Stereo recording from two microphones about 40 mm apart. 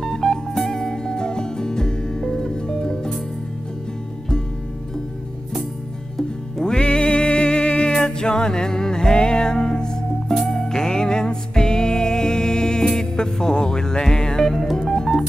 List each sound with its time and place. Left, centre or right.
0.0 s music: centre
6.1 s music: centre
10.4 s music: centre